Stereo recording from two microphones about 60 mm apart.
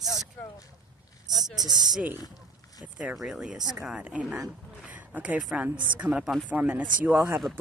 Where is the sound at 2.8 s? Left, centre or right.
Right.